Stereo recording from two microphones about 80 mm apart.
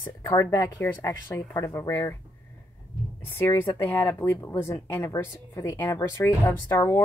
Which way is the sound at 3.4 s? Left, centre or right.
Left.